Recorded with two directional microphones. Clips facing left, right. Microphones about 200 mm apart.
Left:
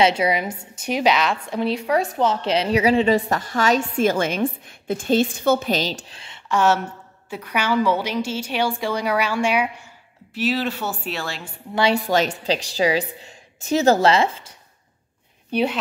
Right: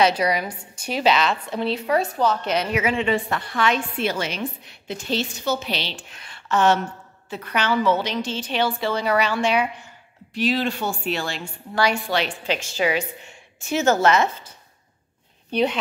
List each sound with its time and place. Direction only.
0.0 s a woman's voice: 25° left (ahead or behind)
2.0 s a woman's voice: 20° left (ahead or behind)
6.5 s a woman's voice: 10° left (ahead or behind)
11.9 s a woman's voice: 40° left (ahead or behind)
15.5 s speech: 5° left (ahead or behind)